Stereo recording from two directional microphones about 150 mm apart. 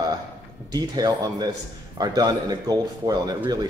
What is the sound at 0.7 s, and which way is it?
Speech, 25° right (ahead or behind).